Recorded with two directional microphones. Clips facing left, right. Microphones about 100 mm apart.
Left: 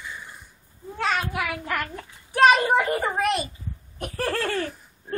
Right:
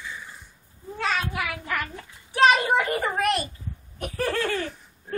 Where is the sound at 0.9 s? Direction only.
Centre (ahead or behind).